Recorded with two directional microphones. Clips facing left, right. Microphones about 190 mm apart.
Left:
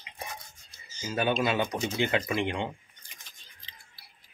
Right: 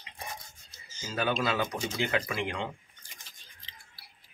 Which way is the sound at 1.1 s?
20° left (ahead or behind).